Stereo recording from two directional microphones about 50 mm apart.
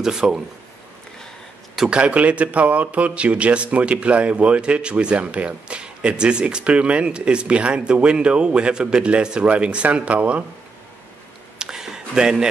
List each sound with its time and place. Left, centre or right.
0.0 s a man's voice: centre
1.9 s speech: right
11.5 s a sound: centre